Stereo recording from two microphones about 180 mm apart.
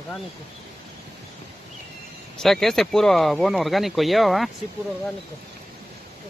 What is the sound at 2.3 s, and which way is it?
Speech, centre (ahead or behind).